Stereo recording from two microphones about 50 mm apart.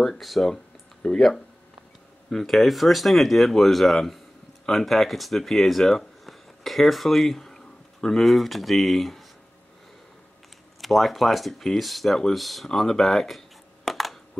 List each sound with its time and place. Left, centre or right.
0.0 s speech: centre
1.0 s speech: centre
2.2 s speech: centre
10.8 s speech: centre
13.8 s computer keyboard: centre